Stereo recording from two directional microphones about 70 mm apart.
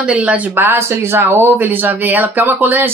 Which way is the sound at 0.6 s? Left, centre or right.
Right.